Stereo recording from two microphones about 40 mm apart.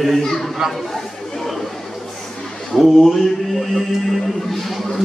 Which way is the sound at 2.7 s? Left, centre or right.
Centre.